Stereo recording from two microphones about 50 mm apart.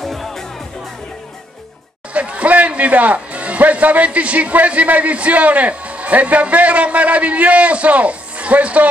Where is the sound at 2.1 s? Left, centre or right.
Right.